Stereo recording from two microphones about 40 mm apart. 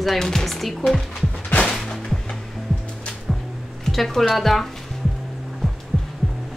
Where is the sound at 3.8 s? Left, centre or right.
Centre.